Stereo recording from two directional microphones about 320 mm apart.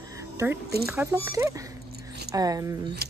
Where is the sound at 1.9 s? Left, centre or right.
Right.